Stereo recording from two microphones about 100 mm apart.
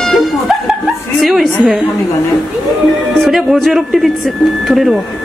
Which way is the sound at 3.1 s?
Centre (ahead or behind).